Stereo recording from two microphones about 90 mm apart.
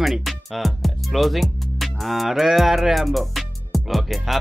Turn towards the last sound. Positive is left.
turn(degrees=0)  # may be behind; listen again after turning